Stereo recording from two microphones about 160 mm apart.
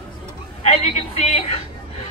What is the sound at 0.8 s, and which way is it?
Speech, 40° left (ahead or behind).